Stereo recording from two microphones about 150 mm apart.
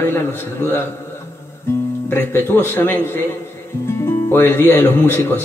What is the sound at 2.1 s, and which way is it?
Speech, 15° left (ahead or behind).